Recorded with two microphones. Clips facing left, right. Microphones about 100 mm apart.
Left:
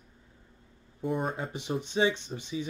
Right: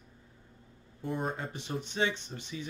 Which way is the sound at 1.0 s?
5° left (ahead or behind).